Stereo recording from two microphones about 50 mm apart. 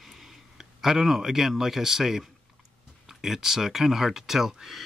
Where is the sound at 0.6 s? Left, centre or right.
Centre.